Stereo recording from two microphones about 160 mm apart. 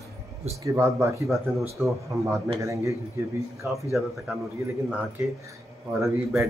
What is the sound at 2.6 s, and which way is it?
Speech, 20° right (ahead or behind).